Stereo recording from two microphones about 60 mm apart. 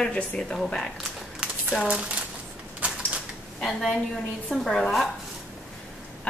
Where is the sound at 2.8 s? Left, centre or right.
Right.